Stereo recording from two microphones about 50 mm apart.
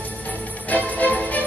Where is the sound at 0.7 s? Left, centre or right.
Left.